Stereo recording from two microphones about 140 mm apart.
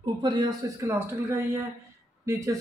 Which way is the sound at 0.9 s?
15° right (ahead or behind).